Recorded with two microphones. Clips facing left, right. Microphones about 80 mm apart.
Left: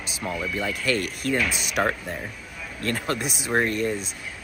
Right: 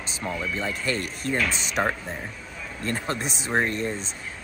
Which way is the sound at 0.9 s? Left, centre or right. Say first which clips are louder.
Left 3 dB; left.